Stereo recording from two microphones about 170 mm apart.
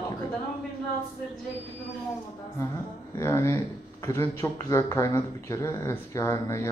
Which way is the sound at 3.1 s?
15° left (ahead or behind).